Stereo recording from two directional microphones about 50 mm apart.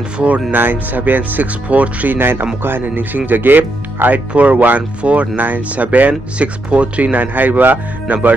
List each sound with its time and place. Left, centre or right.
0.2 s speech: right
2.1 s speech: right